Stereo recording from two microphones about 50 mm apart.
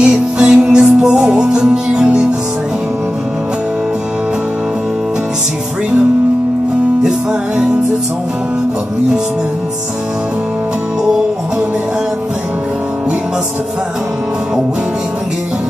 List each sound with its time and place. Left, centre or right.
0.0 s music: centre
7.0 s music: centre